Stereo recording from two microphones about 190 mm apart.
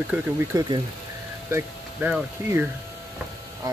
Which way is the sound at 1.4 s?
10° right (ahead or behind).